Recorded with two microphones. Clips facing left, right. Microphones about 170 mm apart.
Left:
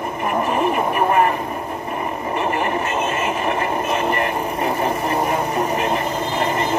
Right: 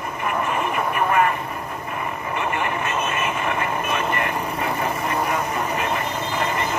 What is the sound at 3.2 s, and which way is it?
Speech, 35° left (ahead or behind).